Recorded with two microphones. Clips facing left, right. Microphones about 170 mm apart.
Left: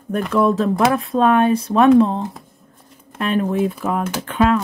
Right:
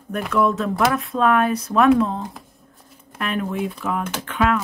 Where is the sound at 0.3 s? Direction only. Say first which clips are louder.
Left 3 dB; 30° left (ahead or behind).